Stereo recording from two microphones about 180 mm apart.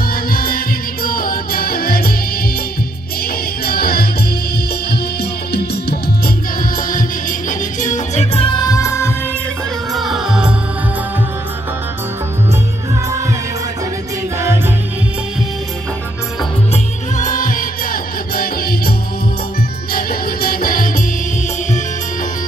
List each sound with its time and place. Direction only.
0.1 s music: 55° left (ahead or behind)
3.6 s music: 55° left (ahead or behind)
5.5 s music: 60° left (ahead or behind); by 8.5 s 40° left (ahead or behind)
8.5 s music: 20° left (ahead or behind)
9.9 s music: centre (ahead or behind)
16.7 s music: 45° left (ahead or behind)
19.9 s music: 55° left (ahead or behind)